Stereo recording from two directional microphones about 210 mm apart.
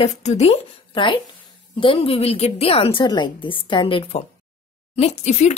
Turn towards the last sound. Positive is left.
turn(degrees=35)  # may be behind; listen again after turning